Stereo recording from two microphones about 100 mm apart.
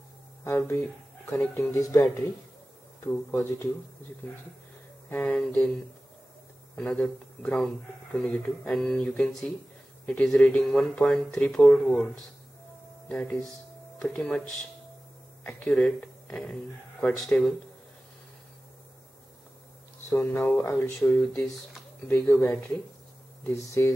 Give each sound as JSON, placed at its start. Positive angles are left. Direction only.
{"t": 0.4, "sound": "speech", "side_deg": 25}
{"t": 3.0, "sound": "speech", "side_deg": 20}
{"t": 5.1, "sound": "speech", "side_deg": 15}
{"t": 6.8, "sound": "speech", "side_deg": 10}
{"t": 13.1, "sound": "speech", "side_deg": 10}
{"t": 20.3, "sound": "speech", "side_deg": 25}
{"t": 23.4, "sound": "speech", "side_deg": 30}